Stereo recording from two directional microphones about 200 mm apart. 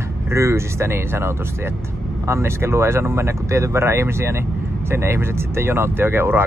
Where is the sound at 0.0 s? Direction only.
15° right (ahead or behind).